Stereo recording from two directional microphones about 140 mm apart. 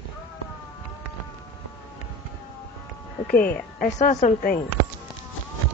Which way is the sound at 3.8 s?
60° left (ahead or behind).